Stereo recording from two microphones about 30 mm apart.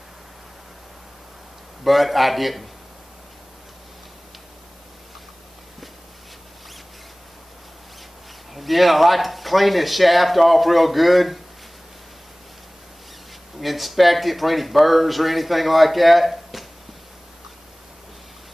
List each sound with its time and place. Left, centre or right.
1.9 s speech: centre
8.5 s speech: centre
13.6 s speech: centre